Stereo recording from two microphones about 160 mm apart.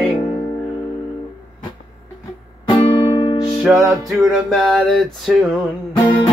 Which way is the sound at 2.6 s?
30° left (ahead or behind).